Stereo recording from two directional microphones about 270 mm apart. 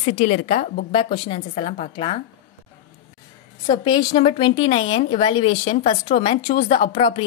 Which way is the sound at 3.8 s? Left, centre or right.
Centre.